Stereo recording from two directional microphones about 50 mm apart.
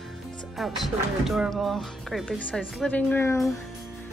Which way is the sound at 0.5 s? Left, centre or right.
Centre.